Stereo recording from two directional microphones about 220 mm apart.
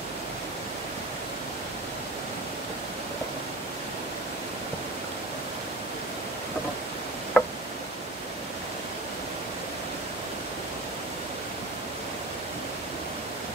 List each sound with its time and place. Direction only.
7.3 s tick: centre (ahead or behind)